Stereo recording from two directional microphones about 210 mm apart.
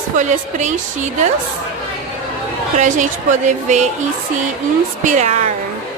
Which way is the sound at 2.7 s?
35° right (ahead or behind).